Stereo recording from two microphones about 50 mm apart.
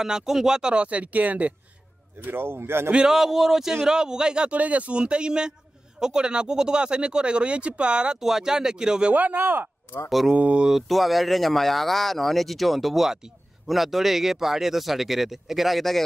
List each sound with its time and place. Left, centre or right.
0.0 s speech: centre; by 1.5 s right
2.2 s speech: right
3.1 s speech: centre
4.6 s speech: right
8.2 s speech: centre
9.1 s speech: right
10.0 s speech: centre
10.3 s speech: right
10.7 s speech: centre